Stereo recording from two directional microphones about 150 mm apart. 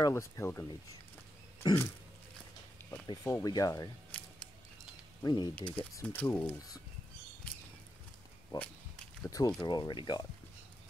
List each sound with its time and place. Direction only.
0.0 s speech: 20° left (ahead or behind)
1.6 s a sound: 25° left (ahead or behind)
3.4 s speech: 25° left (ahead or behind)
4.1 s a sound: 10° left (ahead or behind)
5.2 s speech: 30° left (ahead or behind)
5.6 s speech: 10° left (ahead or behind)
8.5 s walk: 30° left (ahead or behind)
9.2 s speech: 25° left (ahead or behind)